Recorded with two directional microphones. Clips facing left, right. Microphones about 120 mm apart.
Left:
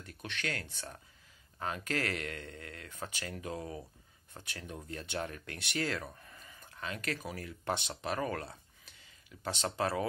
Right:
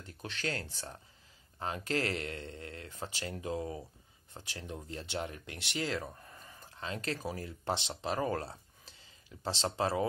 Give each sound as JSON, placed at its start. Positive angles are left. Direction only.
{"t": 0.0, "sound": "speech", "side_deg": -25}